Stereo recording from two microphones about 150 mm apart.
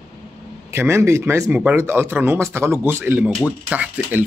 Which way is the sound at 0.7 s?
15° right (ahead or behind).